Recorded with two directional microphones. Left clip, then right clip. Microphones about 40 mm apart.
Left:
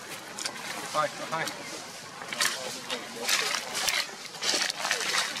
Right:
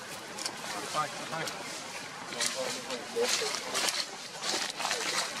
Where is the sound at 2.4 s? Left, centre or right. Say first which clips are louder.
Left 3 dB; left.